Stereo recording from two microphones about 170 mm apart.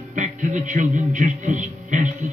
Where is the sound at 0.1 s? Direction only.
45° right (ahead or behind).